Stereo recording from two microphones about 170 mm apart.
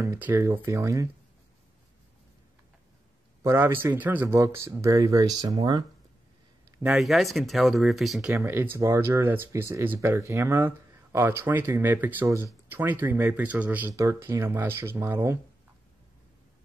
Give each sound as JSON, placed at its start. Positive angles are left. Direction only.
{"t": 0.0, "sound": "speech", "side_deg": -15}
{"t": 3.4, "sound": "speech", "side_deg": -15}
{"t": 6.8, "sound": "speech", "side_deg": -5}
{"t": 8.4, "sound": "speech", "side_deg": -15}